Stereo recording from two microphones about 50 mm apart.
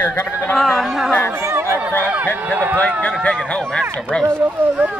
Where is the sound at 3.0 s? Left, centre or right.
Left.